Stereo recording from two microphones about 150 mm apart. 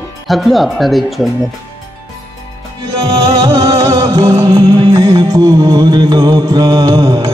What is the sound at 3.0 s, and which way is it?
Music, 25° right (ahead or behind).